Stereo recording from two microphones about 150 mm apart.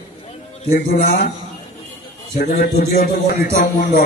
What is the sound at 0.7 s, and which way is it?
Speech, 65° left (ahead or behind).